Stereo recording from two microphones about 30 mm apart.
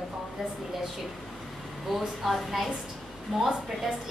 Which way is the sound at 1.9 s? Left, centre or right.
Centre.